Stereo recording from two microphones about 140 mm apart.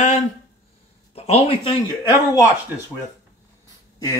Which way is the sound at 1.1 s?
45° left (ahead or behind).